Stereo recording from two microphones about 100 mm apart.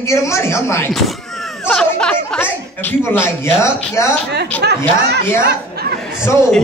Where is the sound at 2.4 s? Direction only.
20° left (ahead or behind).